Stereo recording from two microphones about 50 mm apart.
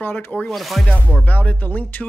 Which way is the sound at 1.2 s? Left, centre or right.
Left.